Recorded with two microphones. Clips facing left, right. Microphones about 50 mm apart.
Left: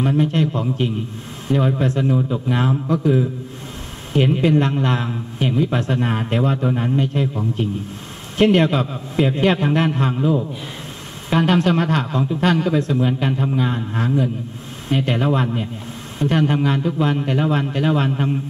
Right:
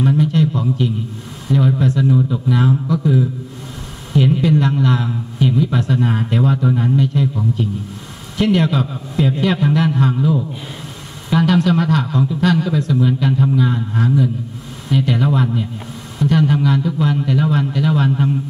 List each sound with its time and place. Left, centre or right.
0.2 s a man's voice: left
4.1 s a man's voice: left
11.2 s a man's voice: left